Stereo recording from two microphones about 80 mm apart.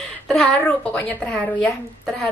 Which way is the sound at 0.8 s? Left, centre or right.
Centre.